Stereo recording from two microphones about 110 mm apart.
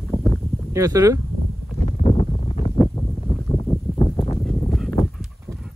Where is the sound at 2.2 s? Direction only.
80° left.